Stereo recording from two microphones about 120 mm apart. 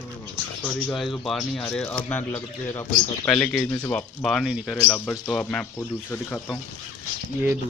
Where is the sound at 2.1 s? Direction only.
20° left (ahead or behind).